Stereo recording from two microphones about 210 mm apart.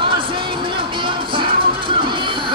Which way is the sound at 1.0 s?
25° right (ahead or behind).